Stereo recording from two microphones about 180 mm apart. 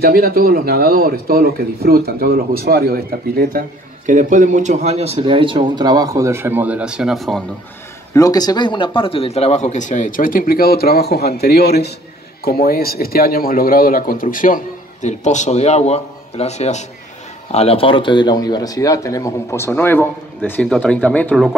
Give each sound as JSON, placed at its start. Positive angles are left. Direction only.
{"t": 0.0, "sound": "speech", "side_deg": -55}
{"t": 8.1, "sound": "speech", "side_deg": 20}